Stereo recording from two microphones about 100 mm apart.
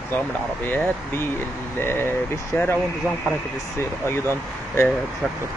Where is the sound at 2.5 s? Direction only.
15° left (ahead or behind).